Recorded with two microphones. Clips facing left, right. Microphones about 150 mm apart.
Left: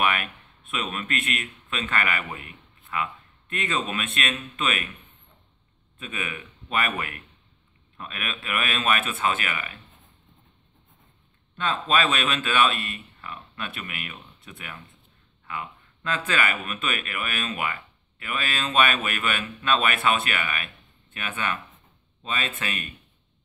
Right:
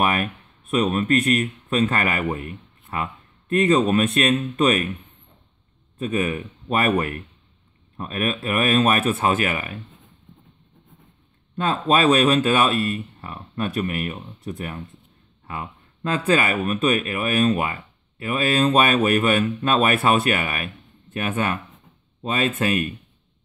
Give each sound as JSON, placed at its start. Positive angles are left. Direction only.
{"t": 0.0, "sound": "speech", "side_deg": -40}
{"t": 5.9, "sound": "speech", "side_deg": -40}
{"t": 11.5, "sound": "speech", "side_deg": -45}